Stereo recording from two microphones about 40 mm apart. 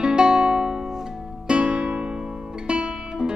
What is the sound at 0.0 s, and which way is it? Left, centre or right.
Music, right.